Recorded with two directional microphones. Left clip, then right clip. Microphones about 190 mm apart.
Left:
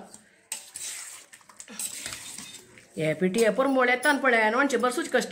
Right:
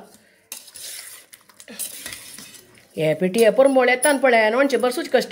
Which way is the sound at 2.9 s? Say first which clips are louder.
Right 6 dB; 30° right (ahead or behind).